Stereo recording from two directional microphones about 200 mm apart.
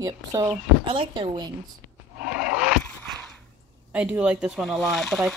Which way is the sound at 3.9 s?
5° right (ahead or behind).